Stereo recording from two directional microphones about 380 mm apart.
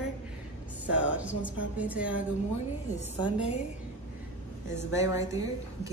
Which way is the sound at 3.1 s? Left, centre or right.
Centre.